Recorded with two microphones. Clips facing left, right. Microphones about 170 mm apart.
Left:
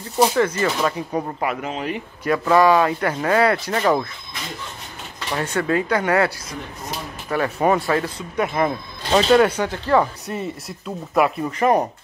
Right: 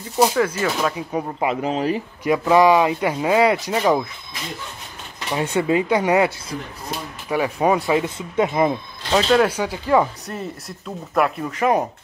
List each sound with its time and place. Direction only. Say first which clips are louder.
0.2 s speech: even; 5° right (ahead or behind)
1.6 s speech: right 5 dB; 35° right (ahead or behind)
2.2 s speech: right 1 dB; 15° right (ahead or behind)
5.3 s speech: right 2 dB; 15° right (ahead or behind)
9.1 s speech: left 2 dB; centre (ahead or behind)
10.2 s speech: left 2 dB; centre (ahead or behind)